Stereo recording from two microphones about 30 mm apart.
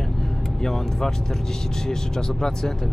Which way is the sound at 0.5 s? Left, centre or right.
Centre.